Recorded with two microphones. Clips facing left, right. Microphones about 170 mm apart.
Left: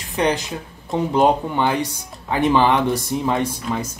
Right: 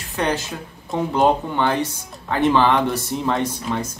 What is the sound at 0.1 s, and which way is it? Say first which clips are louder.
Speech: left 2 dB; 15° left (ahead or behind).